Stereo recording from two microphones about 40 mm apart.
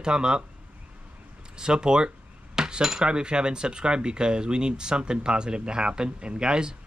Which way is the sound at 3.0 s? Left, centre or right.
Right.